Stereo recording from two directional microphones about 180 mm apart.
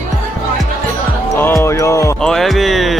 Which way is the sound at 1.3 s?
15° left (ahead or behind).